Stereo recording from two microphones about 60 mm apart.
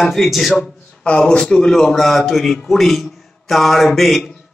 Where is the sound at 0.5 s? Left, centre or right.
Centre.